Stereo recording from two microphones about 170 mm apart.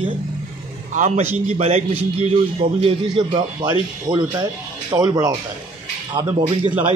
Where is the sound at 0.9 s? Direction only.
45° right (ahead or behind).